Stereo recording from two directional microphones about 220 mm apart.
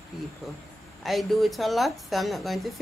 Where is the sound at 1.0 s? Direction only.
Centre (ahead or behind).